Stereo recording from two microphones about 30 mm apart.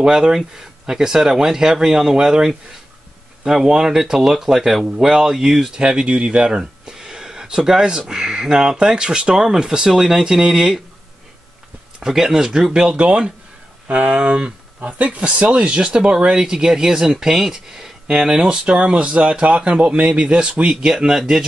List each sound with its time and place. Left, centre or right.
0.0 s speech: right
6.0 s speech: right
6.4 s a sound: right
7.4 s speech: right
12.0 s speech: centre
13.8 s speech: right
14.1 s speech: right
14.8 s speech: right
15.1 s speech: right
18.5 s speech: right
20.9 s speech: right